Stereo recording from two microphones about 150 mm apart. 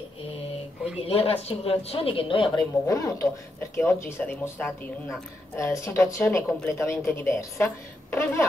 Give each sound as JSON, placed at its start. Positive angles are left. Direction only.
{"t": 1.0, "sound": "a woman's voice", "side_deg": 40}